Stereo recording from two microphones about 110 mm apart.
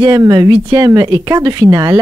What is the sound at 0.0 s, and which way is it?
Speech, 35° right (ahead or behind).